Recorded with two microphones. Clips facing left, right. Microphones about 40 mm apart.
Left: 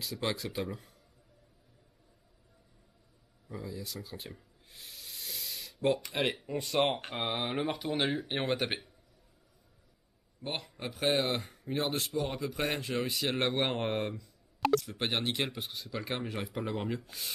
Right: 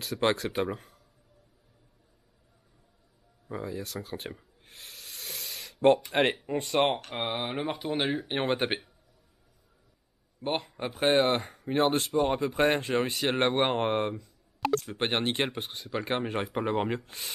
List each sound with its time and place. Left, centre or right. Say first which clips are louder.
0.0 s speech: right 7 dB; right
3.4 s speech: right 6 dB; right
4.6 s hiss: right 2 dB; right
5.5 s a sound: right 2 dB; centre
6.1 s speech: right 7 dB; right
6.7 s speech: right 3 dB; centre
7.1 s speech: right 2 dB; centre
7.7 s speech: right 2 dB; centre
10.4 s speech: right 7 dB; right
11.1 s speech: right 6 dB; right
14.2 s a sound: even; centre
15.0 s speech: right 4 dB; right